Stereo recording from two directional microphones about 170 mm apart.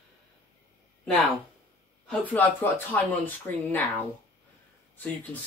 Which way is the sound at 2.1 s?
10° left (ahead or behind).